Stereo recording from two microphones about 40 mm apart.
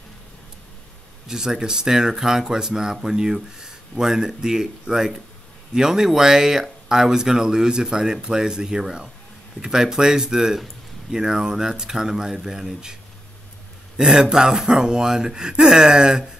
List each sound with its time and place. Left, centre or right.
1.2 s speech: centre
13.9 s speech: centre